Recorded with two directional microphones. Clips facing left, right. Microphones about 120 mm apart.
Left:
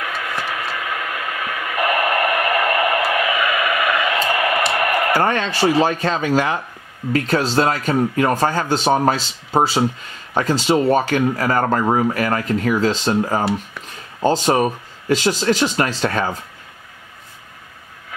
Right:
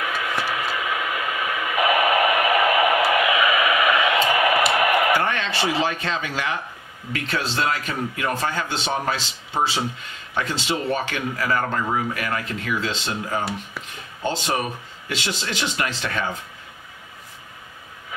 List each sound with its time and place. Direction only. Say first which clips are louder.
0.0 s radio: even; centre (ahead or behind)
5.1 s speech: left 4 dB; 40° left (ahead or behind)